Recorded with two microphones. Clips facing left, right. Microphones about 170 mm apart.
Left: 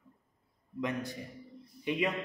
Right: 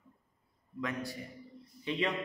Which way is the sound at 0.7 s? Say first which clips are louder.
Left 2 dB; 20° left (ahead or behind).